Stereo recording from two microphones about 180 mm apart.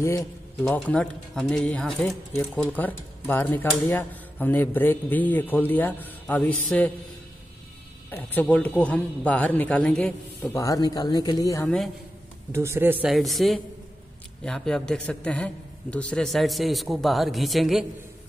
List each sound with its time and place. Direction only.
0.7 s a man's voice: 5° left (ahead or behind)
8.1 s speech: 10° left (ahead or behind)
10.6 s speech: 20° left (ahead or behind)
11.6 s a man's voice: 5° left (ahead or behind)
12.5 s a man's voice: 15° right (ahead or behind)